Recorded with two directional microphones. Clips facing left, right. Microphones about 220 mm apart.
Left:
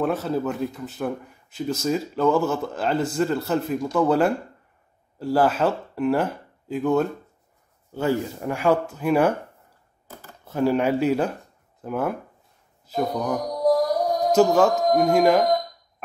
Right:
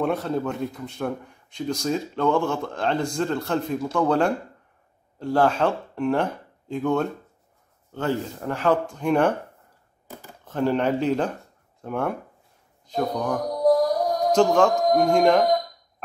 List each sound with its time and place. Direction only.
0.0 s speech: 5° left (ahead or behind)
10.4 s speech: 10° left (ahead or behind)